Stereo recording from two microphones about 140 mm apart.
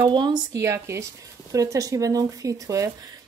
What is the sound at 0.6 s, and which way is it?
Speech, 20° right (ahead or behind).